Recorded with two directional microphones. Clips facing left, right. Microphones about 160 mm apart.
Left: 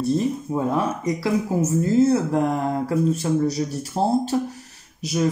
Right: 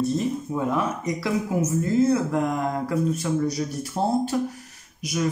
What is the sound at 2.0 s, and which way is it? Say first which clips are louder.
Speech: left 2 dB; 30° left (ahead or behind).